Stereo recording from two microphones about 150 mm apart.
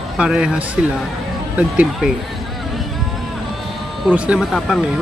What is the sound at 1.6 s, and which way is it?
Speech, 5° right (ahead or behind).